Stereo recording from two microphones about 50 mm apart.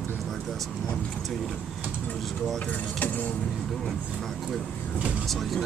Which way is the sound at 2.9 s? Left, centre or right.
Left.